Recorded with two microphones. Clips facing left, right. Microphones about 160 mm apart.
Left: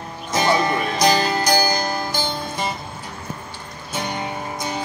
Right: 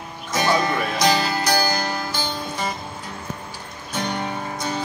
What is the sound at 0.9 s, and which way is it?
Music, 5° right (ahead or behind).